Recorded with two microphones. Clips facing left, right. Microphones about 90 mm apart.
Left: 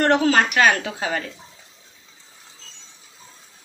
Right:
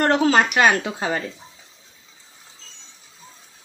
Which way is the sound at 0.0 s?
15° right (ahead or behind).